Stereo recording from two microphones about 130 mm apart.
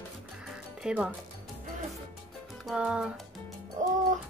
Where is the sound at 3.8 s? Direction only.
75° right (ahead or behind).